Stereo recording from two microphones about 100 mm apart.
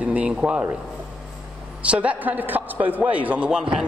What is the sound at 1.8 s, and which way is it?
Speech, 15° right (ahead or behind).